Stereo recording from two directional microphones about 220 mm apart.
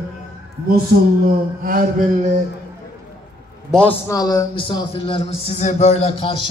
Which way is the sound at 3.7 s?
5° left (ahead or behind).